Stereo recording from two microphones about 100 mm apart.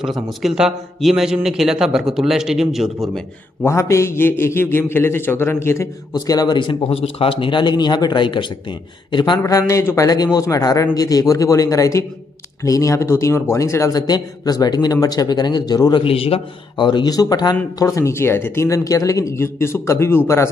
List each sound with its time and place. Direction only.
0.0 s a man's voice: 5° right (ahead or behind)
3.6 s a man's voice: 30° left (ahead or behind)
6.1 s a man's voice: 40° left (ahead or behind)
6.7 s a man's voice: 70° left (ahead or behind); by 9.4 s 50° left (ahead or behind)
9.4 s a man's voice: 35° left (ahead or behind)
16.0 s a man's voice: 70° left (ahead or behind)
16.8 s a man's voice: 45° left (ahead or behind); by 20.2 s 25° left (ahead or behind)